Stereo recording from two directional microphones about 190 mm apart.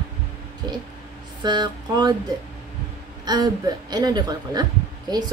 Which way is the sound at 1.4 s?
20° right (ahead or behind).